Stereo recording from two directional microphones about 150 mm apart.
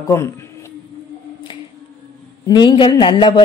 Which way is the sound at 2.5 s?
30° left (ahead or behind).